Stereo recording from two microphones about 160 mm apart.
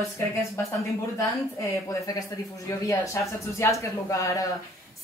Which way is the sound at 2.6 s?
20° left (ahead or behind).